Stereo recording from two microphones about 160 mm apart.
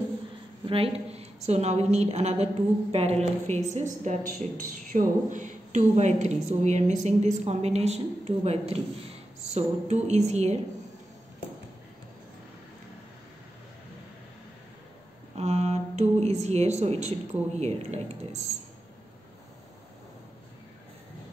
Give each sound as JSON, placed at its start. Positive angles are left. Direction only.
{"t": 0.7, "sound": "a woman's voice", "side_deg": -35}
{"t": 15.3, "sound": "speech", "side_deg": -45}